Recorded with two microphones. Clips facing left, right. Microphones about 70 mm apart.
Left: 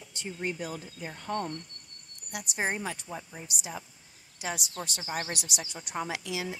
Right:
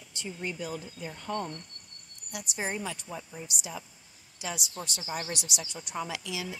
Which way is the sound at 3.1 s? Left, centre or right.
Left.